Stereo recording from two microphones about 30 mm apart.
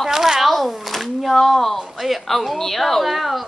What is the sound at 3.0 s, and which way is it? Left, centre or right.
Speech, centre.